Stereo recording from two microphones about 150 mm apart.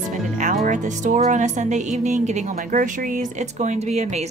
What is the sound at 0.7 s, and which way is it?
Speech, 55° right (ahead or behind).